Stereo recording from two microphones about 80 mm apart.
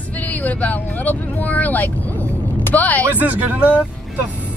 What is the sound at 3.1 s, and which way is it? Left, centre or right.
Speech, right.